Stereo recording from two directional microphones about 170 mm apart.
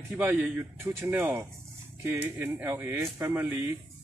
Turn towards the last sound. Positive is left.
turn(degrees=-15)  # may be behind; listen again after turning